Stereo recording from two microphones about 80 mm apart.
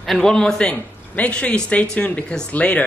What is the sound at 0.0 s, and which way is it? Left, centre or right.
Speech, centre.